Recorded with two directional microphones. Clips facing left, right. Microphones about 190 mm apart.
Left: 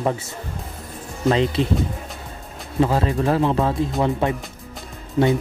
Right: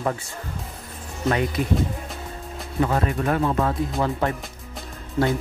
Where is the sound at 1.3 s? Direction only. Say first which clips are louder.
Left 4 dB; 25° left (ahead or behind).